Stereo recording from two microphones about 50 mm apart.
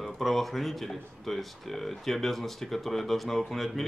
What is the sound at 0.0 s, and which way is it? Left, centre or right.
Speech, centre.